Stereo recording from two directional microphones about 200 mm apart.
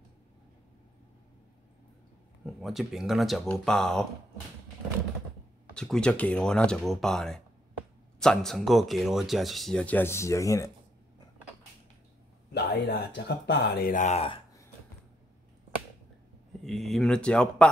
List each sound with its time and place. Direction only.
2.4 s speech: centre (ahead or behind)
5.8 s speech: 5° left (ahead or behind)
12.5 s speech: 55° left (ahead or behind); by 14.4 s 30° left (ahead or behind)
16.6 s speech: centre (ahead or behind)